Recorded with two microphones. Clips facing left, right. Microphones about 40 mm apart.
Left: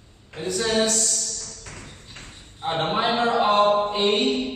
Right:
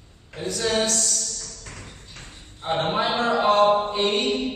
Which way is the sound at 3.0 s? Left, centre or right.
Left.